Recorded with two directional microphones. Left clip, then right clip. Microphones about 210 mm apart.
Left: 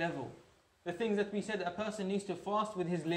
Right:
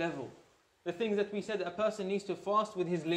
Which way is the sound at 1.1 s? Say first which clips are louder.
Right 2 dB; centre (ahead or behind).